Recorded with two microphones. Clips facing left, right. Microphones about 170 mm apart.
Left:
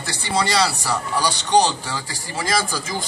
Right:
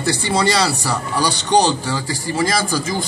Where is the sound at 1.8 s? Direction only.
40° right (ahead or behind).